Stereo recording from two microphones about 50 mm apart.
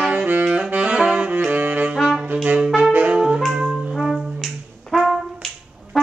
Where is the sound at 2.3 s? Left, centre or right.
Right.